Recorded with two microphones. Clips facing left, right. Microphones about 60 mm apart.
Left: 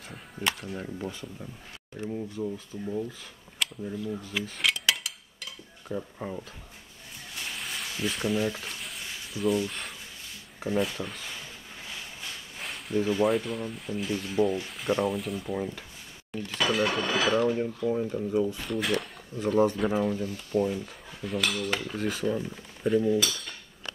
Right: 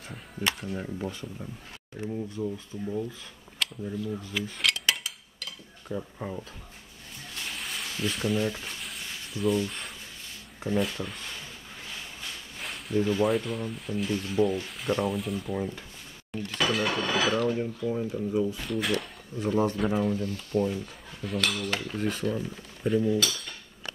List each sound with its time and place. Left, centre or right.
0.1 s speech: centre
3.5 s cutlery: centre
5.9 s speech: centre
7.5 s a sound: centre
10.8 s speech: centre
12.5 s speech: centre